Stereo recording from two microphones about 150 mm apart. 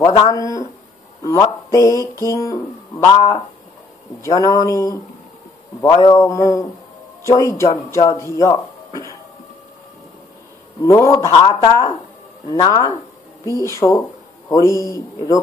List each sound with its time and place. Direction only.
0.0 s speech: 25° left (ahead or behind)
10.8 s speech: 20° left (ahead or behind)